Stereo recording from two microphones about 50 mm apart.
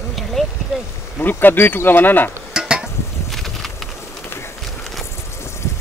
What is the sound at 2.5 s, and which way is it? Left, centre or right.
Stir, centre.